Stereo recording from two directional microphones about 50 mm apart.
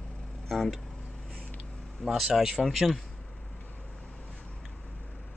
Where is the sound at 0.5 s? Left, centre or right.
Centre.